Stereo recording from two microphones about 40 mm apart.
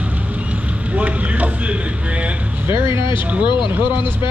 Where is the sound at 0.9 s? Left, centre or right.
Right.